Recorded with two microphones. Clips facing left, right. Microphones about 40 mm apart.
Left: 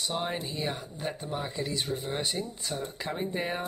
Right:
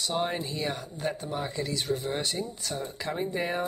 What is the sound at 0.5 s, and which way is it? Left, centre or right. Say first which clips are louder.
Speech: right 1 dB; centre.